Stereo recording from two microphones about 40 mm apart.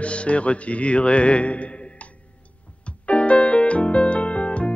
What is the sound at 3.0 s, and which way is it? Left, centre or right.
Music, left.